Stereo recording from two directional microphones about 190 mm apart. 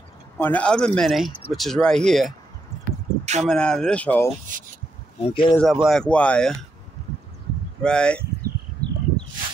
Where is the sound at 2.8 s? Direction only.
35° right (ahead or behind).